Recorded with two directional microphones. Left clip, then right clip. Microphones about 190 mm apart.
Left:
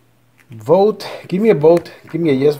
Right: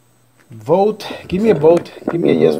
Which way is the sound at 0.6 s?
20° left (ahead or behind).